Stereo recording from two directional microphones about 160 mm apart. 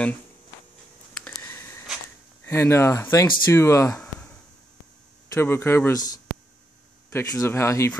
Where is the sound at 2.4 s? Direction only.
15° left (ahead or behind).